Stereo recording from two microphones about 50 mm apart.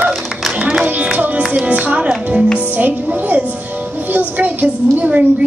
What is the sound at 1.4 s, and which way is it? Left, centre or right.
Music, right.